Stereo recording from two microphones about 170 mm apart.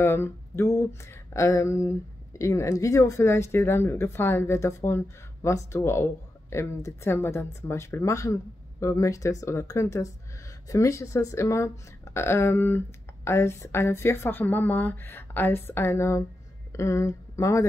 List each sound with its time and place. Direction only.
0.0 s speech: 15° left (ahead or behind)